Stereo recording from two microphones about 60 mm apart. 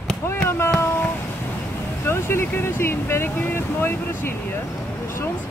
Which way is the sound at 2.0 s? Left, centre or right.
Left.